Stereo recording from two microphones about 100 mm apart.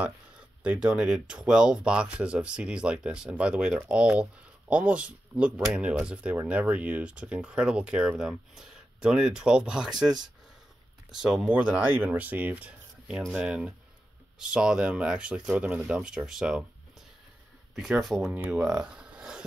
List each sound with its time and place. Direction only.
0.7 s speech: 10° right (ahead or behind)
17.7 s speech: 5° right (ahead or behind)